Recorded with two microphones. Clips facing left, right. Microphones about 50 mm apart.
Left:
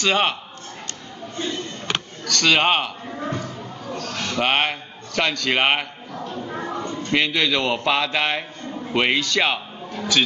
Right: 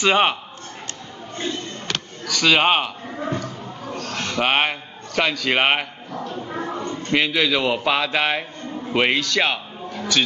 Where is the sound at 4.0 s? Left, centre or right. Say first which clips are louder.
Right 1 dB; right.